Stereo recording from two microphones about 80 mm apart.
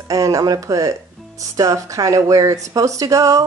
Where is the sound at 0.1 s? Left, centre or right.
Right.